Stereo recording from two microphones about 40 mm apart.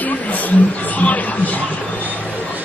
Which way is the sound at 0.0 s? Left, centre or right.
Left.